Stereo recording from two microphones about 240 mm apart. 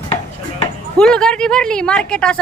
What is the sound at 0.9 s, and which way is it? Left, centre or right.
Speech, centre.